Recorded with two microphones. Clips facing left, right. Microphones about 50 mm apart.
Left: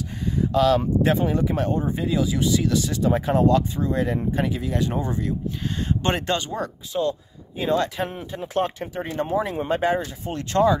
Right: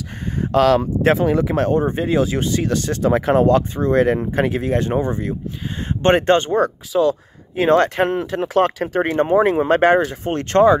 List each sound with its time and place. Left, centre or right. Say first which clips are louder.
0.4 s speech: right 4 dB; right
2.4 s speech: right 1 dB; right
3.1 s speech: right 6 dB; right
3.3 s speech: right 4 dB; right
3.8 s speech: right 7 dB; right
7.0 s speech: right 7 dB; right
8.1 s speech: right 9 dB; right
9.2 s speech: right 8 dB; right
9.7 s speech: right 8 dB; right